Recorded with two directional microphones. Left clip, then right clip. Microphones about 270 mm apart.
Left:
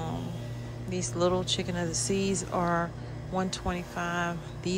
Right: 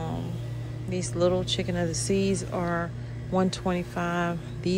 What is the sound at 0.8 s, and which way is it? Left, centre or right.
Speech, centre.